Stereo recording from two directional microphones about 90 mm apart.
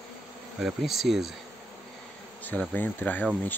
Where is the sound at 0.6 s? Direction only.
Centre (ahead or behind).